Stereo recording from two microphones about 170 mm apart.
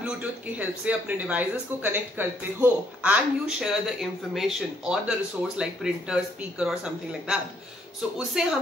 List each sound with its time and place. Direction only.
0.6 s speech: 10° right (ahead or behind)
8.4 s speech: 5° right (ahead or behind)